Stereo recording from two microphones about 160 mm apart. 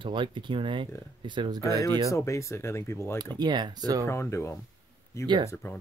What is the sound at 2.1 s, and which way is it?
Speech, 20° left (ahead or behind).